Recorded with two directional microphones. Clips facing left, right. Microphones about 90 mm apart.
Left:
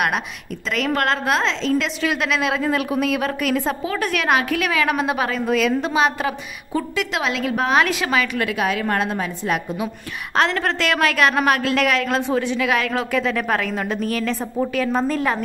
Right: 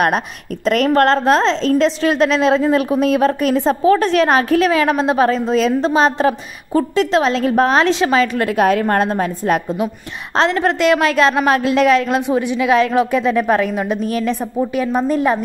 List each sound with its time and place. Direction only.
0.7 s a woman's voice: 45° right (ahead or behind)
10.3 s a woman's voice: 20° right (ahead or behind)